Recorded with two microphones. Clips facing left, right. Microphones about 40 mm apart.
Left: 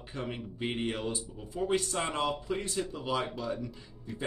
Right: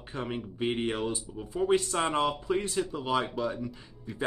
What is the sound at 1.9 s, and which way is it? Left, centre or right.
Speech, right.